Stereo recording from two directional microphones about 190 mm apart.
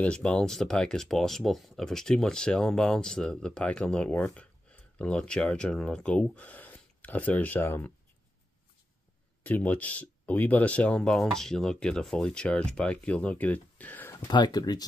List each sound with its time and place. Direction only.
0.0 s speech: 5° left (ahead or behind)
9.4 s speech: 5° left (ahead or behind)
14.2 s speech: 20° left (ahead or behind)